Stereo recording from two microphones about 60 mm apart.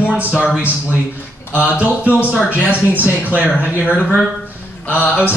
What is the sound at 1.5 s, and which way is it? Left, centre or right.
Speech, right.